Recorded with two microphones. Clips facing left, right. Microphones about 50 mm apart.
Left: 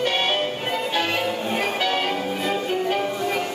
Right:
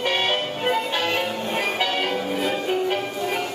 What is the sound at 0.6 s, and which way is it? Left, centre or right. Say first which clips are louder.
Music: right 2 dB; centre.